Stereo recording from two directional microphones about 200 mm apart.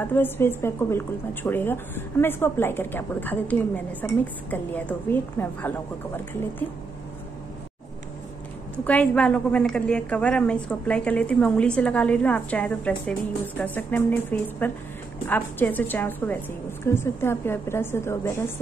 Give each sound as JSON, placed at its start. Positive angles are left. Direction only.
{"t": 0.0, "sound": "a woman's voice", "side_deg": 10}
{"t": 8.7, "sound": "a woman's voice", "side_deg": 5}